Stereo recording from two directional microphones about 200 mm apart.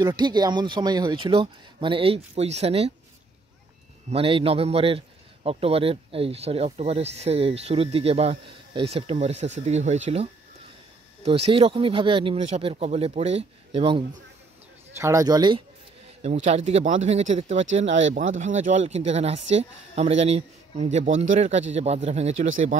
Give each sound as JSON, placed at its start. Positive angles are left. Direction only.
{"t": 0.0, "sound": "speech", "side_deg": -20}
{"t": 4.1, "sound": "a man's voice", "side_deg": -30}
{"t": 11.2, "sound": "speech", "side_deg": -30}
{"t": 15.0, "sound": "speech", "side_deg": -15}
{"t": 16.4, "sound": "a man's voice", "side_deg": -35}